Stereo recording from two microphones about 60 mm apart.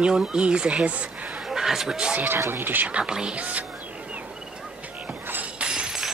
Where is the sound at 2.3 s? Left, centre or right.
Right.